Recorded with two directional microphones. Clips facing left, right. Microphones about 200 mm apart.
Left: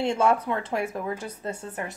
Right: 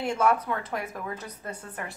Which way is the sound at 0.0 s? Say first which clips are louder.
Left 2 dB; 25° left (ahead or behind).